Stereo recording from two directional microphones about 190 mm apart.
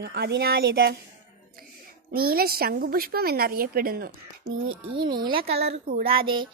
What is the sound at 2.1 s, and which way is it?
A woman's voice, 50° right (ahead or behind).